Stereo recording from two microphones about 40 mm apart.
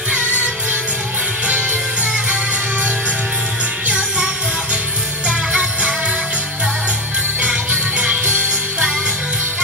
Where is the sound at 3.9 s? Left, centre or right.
Right.